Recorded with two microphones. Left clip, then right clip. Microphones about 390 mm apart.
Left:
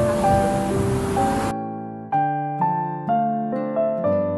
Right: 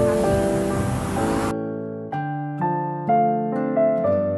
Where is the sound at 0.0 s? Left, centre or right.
Centre.